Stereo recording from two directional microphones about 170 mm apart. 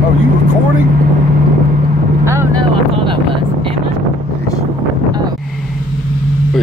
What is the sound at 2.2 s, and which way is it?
Vehicle, 15° right (ahead or behind).